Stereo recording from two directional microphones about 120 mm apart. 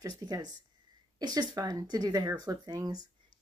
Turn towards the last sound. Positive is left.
turn(degrees=-35)  # may be behind; listen again after turning